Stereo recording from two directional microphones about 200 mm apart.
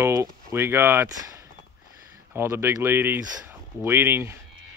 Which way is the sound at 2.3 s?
10° right (ahead or behind).